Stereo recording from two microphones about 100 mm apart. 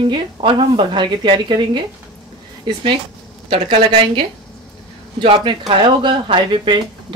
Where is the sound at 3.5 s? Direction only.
60° right (ahead or behind).